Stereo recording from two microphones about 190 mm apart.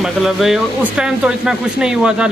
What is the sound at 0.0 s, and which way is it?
Speech, centre (ahead or behind).